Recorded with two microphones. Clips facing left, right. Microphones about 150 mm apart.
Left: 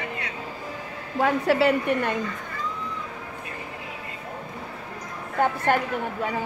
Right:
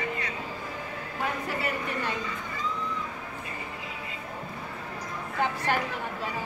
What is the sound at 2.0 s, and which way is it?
Speech, 55° left (ahead or behind).